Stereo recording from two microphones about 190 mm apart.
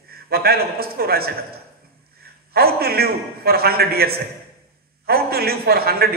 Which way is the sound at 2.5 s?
55° right (ahead or behind).